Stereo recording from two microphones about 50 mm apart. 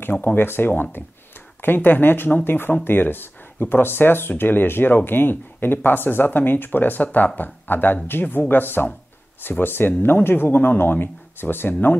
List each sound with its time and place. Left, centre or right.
0.0 s speech: left